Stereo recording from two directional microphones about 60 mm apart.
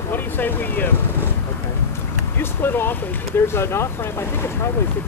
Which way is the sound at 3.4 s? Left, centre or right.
Left.